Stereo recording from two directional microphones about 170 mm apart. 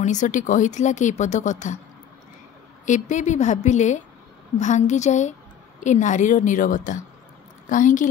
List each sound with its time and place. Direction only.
0.0 s speech: 45° left (ahead or behind)
2.8 s speech: 45° left (ahead or behind)